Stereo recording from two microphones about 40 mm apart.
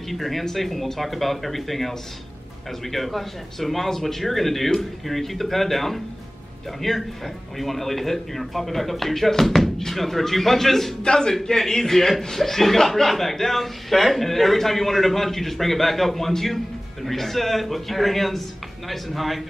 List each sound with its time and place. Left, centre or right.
0.1 s a man's voice: centre
11.0 s a man's voice: centre